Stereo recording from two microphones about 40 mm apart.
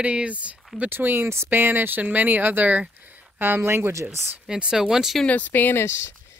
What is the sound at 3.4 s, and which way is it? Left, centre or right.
Speech, right.